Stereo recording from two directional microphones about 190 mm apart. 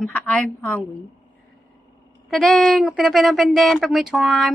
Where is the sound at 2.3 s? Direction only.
Centre (ahead or behind).